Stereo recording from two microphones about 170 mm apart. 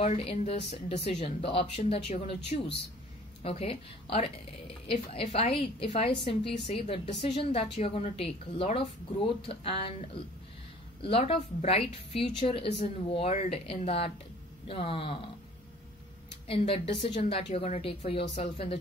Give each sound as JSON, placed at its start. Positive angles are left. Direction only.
{"t": 0.0, "sound": "a woman's voice", "side_deg": 35}
{"t": 16.4, "sound": "a woman's voice", "side_deg": 35}